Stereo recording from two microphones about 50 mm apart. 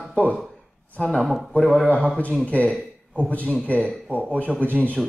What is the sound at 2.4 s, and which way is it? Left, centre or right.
Speech, left.